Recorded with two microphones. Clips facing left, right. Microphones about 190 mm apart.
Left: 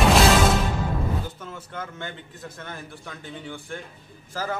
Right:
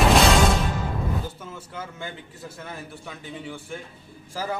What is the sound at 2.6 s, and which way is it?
A man's voice, 5° right (ahead or behind).